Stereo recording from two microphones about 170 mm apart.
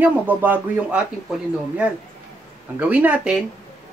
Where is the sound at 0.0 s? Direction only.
10° right (ahead or behind).